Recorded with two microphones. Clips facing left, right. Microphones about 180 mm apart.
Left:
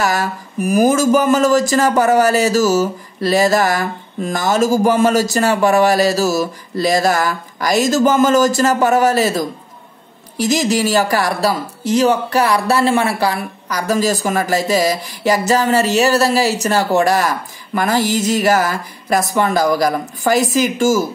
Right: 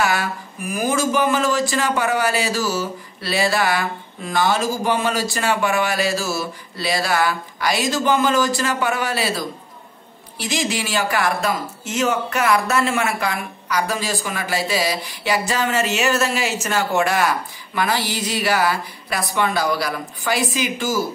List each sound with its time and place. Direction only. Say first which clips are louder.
0.0 s speech: left 3 dB; 40° left (ahead or behind)